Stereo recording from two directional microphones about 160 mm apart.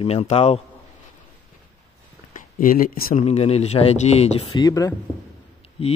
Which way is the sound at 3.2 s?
40° left (ahead or behind).